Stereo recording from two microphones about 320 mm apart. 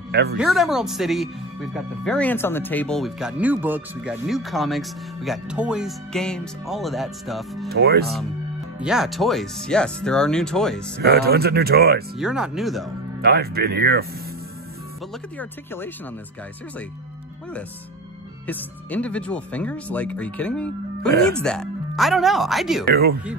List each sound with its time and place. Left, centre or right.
0.1 s speech: right
0.4 s speech: centre
7.7 s speech: right
8.8 s speech: centre
11.0 s speech: right
12.2 s speech: centre
13.2 s speech: right
15.3 s speech: centre
18.5 s speech: centre